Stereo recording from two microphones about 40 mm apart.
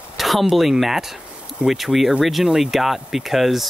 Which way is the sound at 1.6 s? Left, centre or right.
Centre.